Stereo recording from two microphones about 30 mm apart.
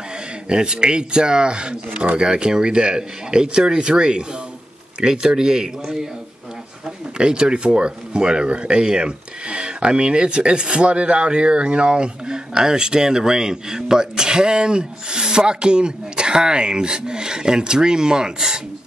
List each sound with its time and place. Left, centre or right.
0.5 s speech: right
7.2 s speech: right